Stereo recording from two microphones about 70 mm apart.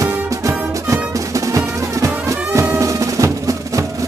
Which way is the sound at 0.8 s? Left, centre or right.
Right.